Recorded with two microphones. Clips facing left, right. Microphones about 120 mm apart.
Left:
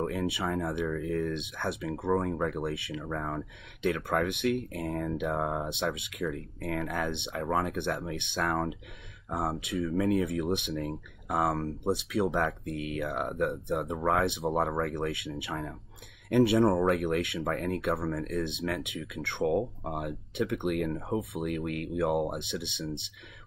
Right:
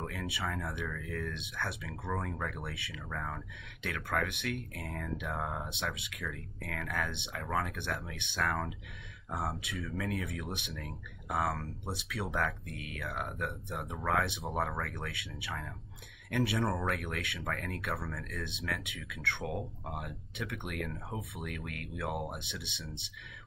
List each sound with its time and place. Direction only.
0.0 s speech: 25° left (ahead or behind)